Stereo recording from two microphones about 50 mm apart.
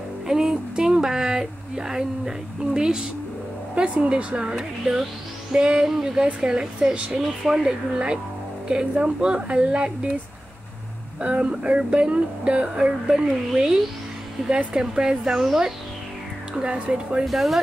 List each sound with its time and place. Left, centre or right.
0.3 s speech: centre
4.6 s speech: centre
11.1 s speech: right
13.0 s speech: centre
16.5 s speech: centre
17.3 s speech: centre